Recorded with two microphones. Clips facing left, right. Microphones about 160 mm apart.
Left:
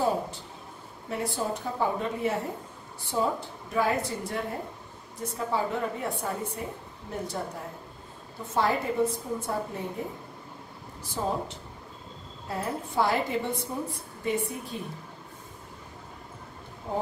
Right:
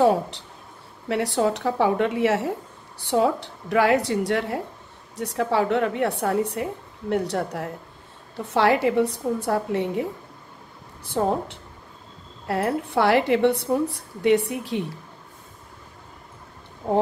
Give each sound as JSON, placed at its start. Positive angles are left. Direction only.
{"t": 0.0, "sound": "a woman's voice", "side_deg": -70}
{"t": 11.1, "sound": "a woman's voice", "side_deg": -60}
{"t": 16.8, "sound": "speech", "side_deg": -65}